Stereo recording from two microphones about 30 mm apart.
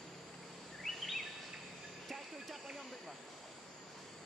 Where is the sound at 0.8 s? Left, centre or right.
Centre.